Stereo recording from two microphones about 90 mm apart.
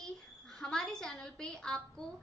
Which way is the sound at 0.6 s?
5° left (ahead or behind).